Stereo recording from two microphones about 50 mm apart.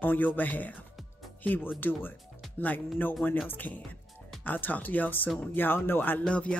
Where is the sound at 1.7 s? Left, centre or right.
Left.